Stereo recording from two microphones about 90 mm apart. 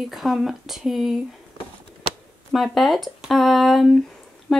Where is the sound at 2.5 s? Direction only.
Centre (ahead or behind).